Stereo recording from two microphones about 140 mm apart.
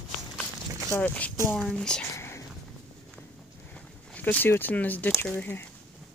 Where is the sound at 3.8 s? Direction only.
10° left (ahead or behind).